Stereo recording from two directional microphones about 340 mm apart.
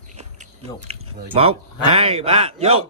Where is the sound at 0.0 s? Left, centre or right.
Right.